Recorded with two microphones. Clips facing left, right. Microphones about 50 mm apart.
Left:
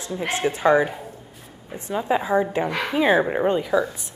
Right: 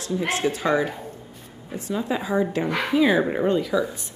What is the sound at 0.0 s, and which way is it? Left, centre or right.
Speech, left.